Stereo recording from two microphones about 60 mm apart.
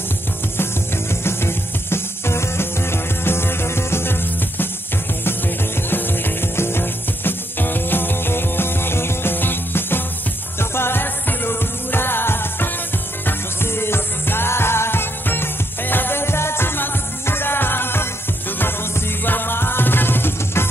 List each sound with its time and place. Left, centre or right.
1.2 s music: left
5.8 s music: left